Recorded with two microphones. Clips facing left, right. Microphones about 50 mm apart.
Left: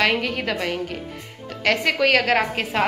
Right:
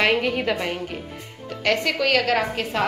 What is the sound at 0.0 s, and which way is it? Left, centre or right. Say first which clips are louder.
Speech: right 1 dB; centre.